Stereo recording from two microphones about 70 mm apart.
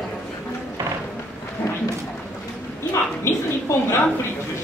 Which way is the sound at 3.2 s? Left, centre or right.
Left.